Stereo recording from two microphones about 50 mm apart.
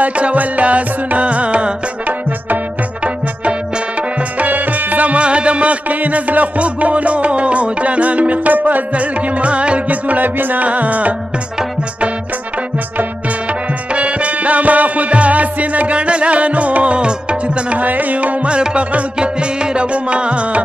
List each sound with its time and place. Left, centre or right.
0.0 s music: right
13.5 s music: right